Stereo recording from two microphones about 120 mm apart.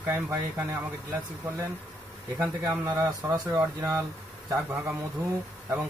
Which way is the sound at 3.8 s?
25° right (ahead or behind).